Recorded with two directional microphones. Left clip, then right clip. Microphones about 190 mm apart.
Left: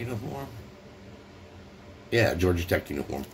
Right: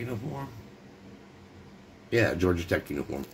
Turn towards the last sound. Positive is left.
turn(degrees=-5)  # may be behind; listen again after turning